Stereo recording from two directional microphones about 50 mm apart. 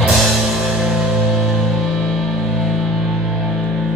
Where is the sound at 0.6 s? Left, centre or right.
Centre.